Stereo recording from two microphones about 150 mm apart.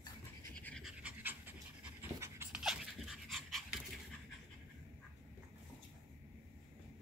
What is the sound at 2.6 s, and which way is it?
Dog, 5° right (ahead or behind).